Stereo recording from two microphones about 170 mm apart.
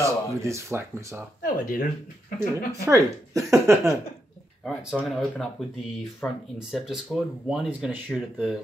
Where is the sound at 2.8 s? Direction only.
20° right (ahead or behind).